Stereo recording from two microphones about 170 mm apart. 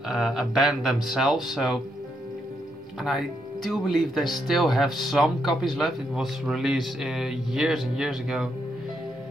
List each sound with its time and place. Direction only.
0.1 s speech: centre (ahead or behind)
3.0 s speech: centre (ahead or behind)